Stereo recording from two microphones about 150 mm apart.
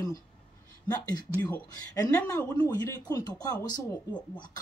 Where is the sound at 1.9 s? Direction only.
25° left (ahead or behind).